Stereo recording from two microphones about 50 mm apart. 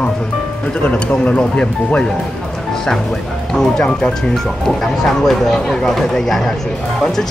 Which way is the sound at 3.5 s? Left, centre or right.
Centre.